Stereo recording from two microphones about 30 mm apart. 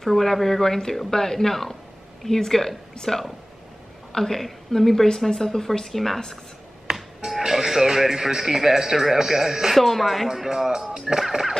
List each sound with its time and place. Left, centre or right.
0.0 s a woman's voice: centre
6.9 s music: right
7.2 s music: centre
8.1 s speech: centre
9.8 s speech: centre
10.2 s speech: centre
11.1 s speech: centre